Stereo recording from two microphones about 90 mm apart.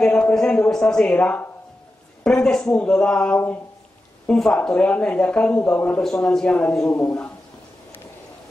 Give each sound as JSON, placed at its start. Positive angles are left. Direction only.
{"t": 0.0, "sound": "speech", "side_deg": 10}
{"t": 6.0, "sound": "speech", "side_deg": 5}